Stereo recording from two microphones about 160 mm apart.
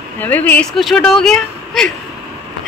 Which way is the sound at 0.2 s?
10° left (ahead or behind).